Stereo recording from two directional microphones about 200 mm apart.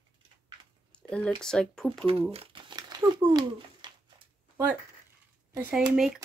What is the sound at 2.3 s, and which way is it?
Crumpling, 25° right (ahead or behind).